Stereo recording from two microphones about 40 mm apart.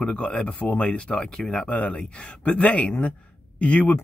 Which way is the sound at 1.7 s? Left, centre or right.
Left.